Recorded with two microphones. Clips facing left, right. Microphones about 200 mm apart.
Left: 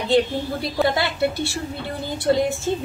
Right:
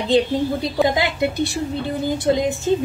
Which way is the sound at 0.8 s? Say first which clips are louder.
Right 1 dB; 15° right (ahead or behind).